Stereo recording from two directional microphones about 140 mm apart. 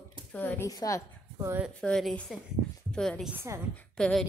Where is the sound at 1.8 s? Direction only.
5° left (ahead or behind).